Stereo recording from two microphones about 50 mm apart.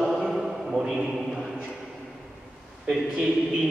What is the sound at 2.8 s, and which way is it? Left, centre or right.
Speech, centre.